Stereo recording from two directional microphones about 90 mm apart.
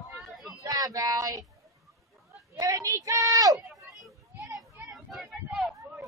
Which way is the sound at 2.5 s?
40° right (ahead or behind).